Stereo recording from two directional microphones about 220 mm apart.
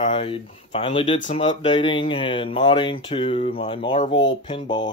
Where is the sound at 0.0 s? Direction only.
25° left (ahead or behind).